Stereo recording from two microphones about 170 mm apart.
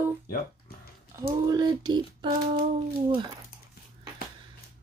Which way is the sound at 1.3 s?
20° right (ahead or behind).